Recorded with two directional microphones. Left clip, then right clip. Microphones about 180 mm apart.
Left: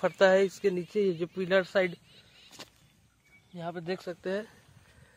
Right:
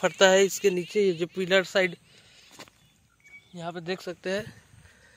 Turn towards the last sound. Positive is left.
turn(degrees=-20)  # may be behind; listen again after turning